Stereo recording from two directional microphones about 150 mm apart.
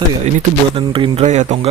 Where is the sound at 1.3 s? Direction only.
50° right (ahead or behind).